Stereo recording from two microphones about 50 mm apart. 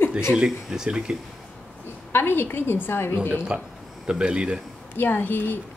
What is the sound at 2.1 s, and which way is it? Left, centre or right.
A woman's voice, left.